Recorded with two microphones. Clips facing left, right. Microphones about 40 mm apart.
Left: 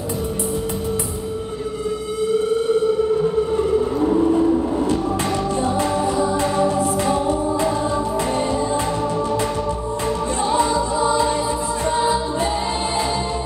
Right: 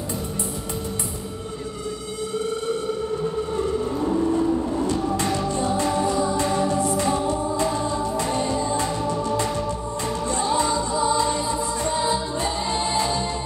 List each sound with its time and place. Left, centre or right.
3.5 s vehicle: centre
6.0 s music: left
8.4 s music: left
10.5 s music: centre